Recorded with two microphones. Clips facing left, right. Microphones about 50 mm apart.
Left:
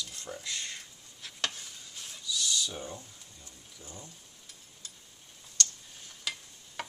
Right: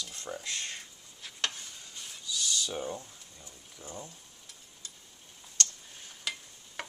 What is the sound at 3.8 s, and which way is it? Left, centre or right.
Speech, right.